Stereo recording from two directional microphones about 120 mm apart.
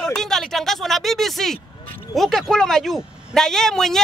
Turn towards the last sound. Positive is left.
turn(degrees=5)  # may be behind; listen again after turning